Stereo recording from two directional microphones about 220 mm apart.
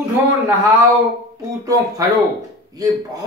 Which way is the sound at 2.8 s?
15° right (ahead or behind).